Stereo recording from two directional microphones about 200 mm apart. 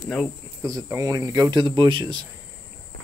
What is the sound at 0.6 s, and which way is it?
Speech, 15° right (ahead or behind).